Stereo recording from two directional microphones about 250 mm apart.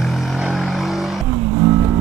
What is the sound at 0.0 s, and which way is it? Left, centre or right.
Vehicle, centre.